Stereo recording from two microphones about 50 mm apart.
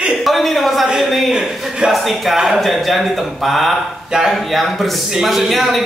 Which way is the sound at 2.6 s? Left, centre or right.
Centre.